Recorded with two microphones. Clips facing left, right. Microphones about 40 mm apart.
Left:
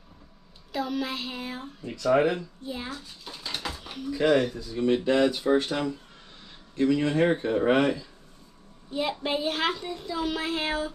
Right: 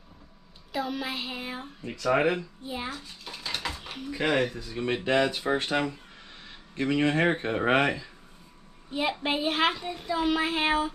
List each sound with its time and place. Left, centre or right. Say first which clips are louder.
0.7 s speech: left 2 dB; centre
3.8 s speech: left 6 dB; centre
4.6 s speech: left 5 dB; right
8.9 s a woman's voice: even; centre